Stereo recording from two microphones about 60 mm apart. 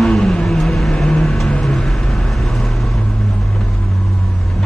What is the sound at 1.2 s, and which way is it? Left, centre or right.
Vehicle, centre.